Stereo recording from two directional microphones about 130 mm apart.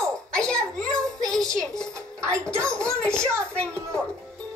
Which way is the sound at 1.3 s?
5° left (ahead or behind).